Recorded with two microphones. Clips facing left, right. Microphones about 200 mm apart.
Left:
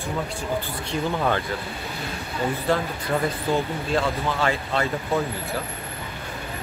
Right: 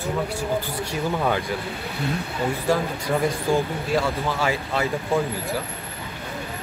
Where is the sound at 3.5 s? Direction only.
10° right (ahead or behind).